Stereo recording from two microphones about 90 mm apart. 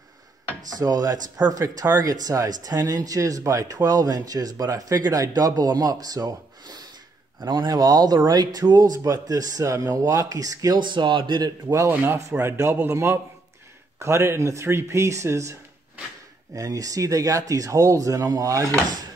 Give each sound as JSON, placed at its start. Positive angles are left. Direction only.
{"t": 0.7, "sound": "speech", "side_deg": -45}
{"t": 10.8, "sound": "speech", "side_deg": -60}
{"t": 11.9, "sound": "a man's voice", "side_deg": -20}
{"t": 12.2, "sound": "a man's voice", "side_deg": -35}
{"t": 16.5, "sound": "speech", "side_deg": -40}